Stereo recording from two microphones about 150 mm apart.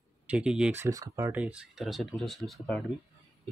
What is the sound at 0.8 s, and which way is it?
Speech, 20° right (ahead or behind).